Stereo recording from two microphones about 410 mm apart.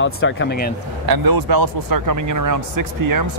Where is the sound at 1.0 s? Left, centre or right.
Right.